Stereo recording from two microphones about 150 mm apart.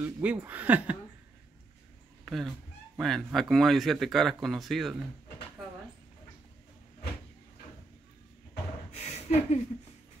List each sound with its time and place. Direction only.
0.0 s speech: 10° right (ahead or behind)
2.2 s speech: centre (ahead or behind)
8.9 s a sound: 50° left (ahead or behind)